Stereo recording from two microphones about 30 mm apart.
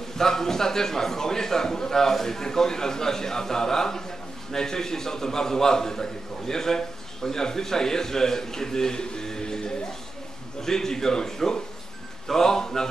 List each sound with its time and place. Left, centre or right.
0.2 s a man's voice: centre